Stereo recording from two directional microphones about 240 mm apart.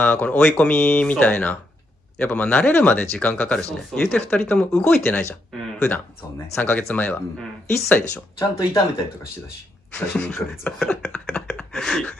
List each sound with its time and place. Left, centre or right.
0.0 s speech: centre
8.4 s speech: centre
9.9 s a sound: centre